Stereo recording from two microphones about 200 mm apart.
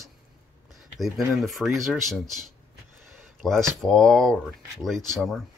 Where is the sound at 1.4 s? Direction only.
Centre (ahead or behind).